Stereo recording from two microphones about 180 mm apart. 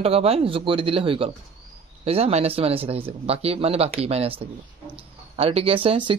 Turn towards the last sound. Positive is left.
turn(degrees=-30)  # may be behind; listen again after turning